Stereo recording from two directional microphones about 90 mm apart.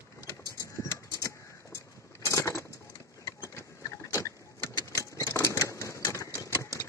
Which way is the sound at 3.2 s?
30° left (ahead or behind).